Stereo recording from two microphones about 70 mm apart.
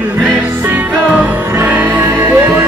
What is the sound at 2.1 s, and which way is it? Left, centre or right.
Music, right.